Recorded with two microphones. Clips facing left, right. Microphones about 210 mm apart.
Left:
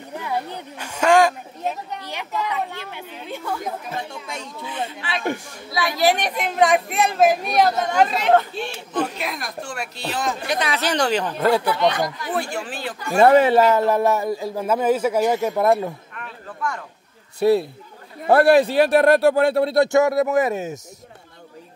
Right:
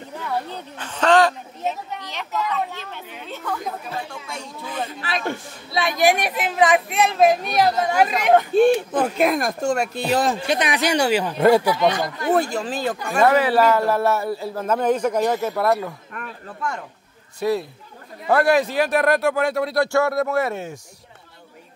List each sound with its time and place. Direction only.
0.2 s a woman's voice: 15° left (ahead or behind)
4.6 s speech: 40° right (ahead or behind)
5.7 s a woman's voice: 20° right (ahead or behind)
8.9 s speech: 50° right (ahead or behind)
10.4 s a woman's voice: 20° right (ahead or behind)
12.2 s speech: 45° right (ahead or behind)
13.2 s a man's voice: 25° left (ahead or behind)
18.2 s a man's voice: 35° left (ahead or behind)